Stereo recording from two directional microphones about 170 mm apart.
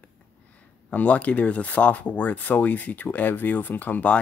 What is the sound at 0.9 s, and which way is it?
Speech, 10° left (ahead or behind).